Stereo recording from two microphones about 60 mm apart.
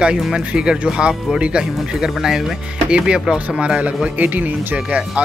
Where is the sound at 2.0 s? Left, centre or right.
Centre.